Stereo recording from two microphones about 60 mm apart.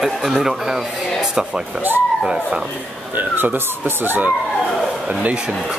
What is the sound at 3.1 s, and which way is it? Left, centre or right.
Speech, right.